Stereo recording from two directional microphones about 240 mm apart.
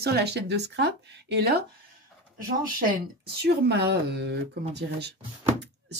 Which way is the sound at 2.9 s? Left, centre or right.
Right.